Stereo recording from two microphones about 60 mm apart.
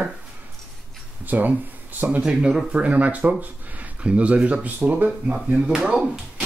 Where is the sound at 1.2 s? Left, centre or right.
Right.